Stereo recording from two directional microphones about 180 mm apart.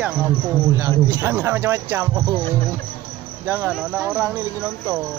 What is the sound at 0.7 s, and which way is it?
Speech, 20° right (ahead or behind).